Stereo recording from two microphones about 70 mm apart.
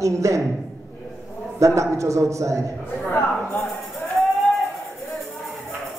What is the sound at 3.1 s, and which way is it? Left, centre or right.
Speech, left.